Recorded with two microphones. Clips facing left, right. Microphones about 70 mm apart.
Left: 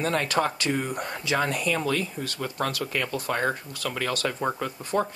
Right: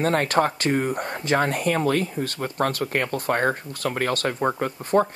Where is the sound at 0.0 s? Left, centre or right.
Right.